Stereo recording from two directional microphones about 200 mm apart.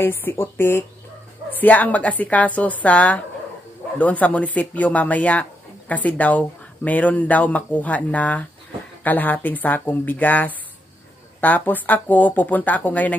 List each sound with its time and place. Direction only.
0.0 s speech: 10° left (ahead or behind)